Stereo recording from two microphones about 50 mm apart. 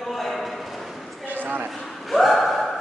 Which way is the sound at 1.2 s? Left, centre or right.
Right.